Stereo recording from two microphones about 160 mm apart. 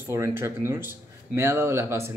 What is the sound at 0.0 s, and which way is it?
Speech, 15° right (ahead or behind).